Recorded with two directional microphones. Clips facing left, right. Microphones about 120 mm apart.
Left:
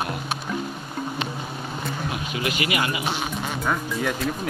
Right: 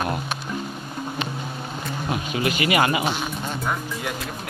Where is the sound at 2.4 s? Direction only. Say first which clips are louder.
Right 5 dB; 40° right (ahead or behind).